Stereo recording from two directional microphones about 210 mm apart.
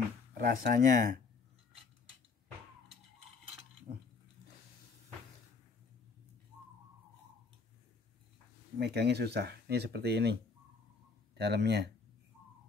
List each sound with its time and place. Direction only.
0.3 s speech: 45° right (ahead or behind)
3.9 s a sound: 45° right (ahead or behind)
8.7 s speech: 50° right (ahead or behind)
11.3 s speech: 50° right (ahead or behind)